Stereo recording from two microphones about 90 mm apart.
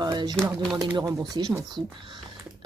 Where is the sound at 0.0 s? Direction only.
55° right (ahead or behind).